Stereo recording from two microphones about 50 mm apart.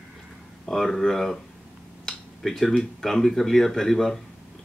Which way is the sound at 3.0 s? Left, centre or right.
Centre.